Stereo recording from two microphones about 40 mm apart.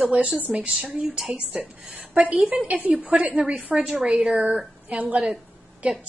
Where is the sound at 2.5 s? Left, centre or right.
Right.